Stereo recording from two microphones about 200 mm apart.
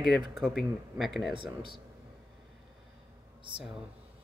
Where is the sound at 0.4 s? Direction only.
Centre (ahead or behind).